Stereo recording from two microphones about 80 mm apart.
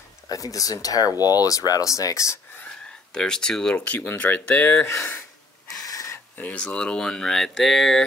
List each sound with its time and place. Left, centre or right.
0.3 s speech: left
2.6 s speech: centre
4.8 s speech: left
5.8 s a sound: left
6.3 s speech: centre